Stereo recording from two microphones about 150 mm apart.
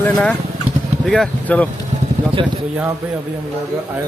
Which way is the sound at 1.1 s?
5° left (ahead or behind).